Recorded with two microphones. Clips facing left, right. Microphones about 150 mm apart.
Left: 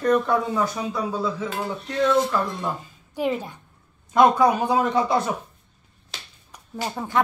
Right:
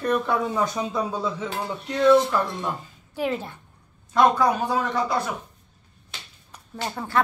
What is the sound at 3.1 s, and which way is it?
A woman's voice, 15° left (ahead or behind).